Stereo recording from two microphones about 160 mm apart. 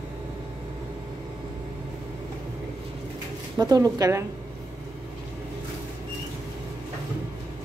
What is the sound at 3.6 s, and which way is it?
Speech, 25° right (ahead or behind).